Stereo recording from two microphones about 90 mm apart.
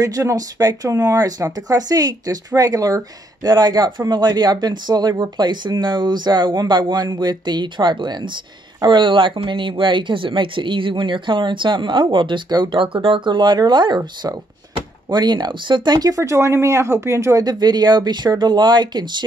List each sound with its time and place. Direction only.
0.0 s speech: 40° right (ahead or behind)